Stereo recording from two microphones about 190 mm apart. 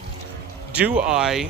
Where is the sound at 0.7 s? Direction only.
5° right (ahead or behind).